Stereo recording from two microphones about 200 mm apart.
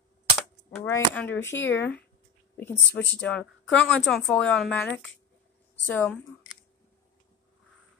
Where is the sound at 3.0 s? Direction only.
65° left (ahead or behind).